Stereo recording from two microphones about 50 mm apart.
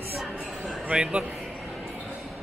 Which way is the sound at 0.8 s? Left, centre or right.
Centre.